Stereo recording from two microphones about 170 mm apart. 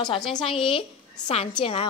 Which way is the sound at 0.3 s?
30° left (ahead or behind).